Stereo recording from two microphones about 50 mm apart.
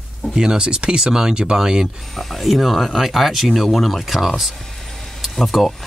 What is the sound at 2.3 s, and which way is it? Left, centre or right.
Speech, centre.